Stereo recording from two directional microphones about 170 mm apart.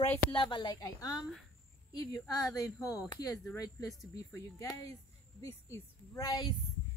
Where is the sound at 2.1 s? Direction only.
20° left (ahead or behind).